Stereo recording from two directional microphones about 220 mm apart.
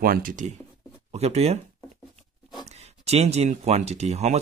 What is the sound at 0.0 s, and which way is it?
Speech, 40° right (ahead or behind).